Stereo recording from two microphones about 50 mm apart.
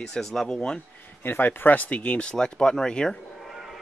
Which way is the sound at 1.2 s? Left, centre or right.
Left.